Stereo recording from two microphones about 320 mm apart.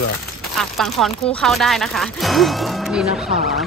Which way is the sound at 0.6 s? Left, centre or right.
Centre.